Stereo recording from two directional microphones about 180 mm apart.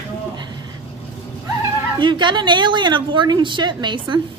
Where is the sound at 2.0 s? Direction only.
25° right (ahead or behind).